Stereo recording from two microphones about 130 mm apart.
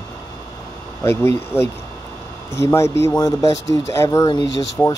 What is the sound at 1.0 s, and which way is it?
Speech, 20° left (ahead or behind).